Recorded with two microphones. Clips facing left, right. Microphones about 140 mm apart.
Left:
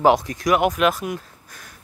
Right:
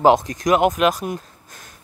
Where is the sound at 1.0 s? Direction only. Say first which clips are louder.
Right 1 dB; 25° right (ahead or behind).